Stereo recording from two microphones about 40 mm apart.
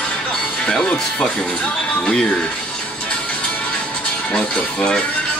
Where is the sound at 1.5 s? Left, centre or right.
Left.